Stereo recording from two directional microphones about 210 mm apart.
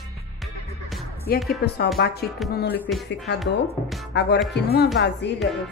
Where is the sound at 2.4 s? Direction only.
Centre (ahead or behind).